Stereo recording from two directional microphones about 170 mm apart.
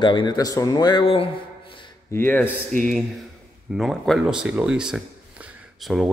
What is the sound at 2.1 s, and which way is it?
Speech, 10° left (ahead or behind).